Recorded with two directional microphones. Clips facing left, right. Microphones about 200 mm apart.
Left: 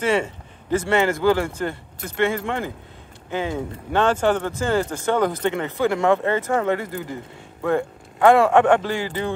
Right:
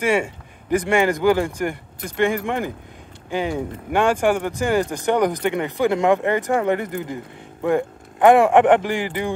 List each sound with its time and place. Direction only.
0.0 s speech: 10° right (ahead or behind)